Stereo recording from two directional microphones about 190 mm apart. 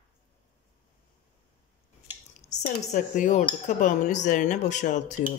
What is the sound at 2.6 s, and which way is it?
Speech, 40° left (ahead or behind).